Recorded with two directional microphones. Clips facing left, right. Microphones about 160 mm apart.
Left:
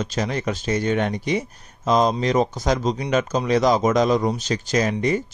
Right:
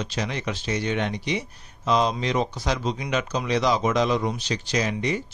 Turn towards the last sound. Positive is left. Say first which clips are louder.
# left 5 dB
turn(degrees=45)  # may be behind; listen again after turning